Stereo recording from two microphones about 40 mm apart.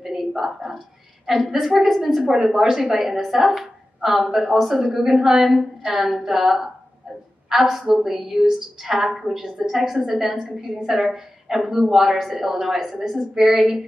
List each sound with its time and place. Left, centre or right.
0.0 s whispering: centre
1.4 s a woman's voice: centre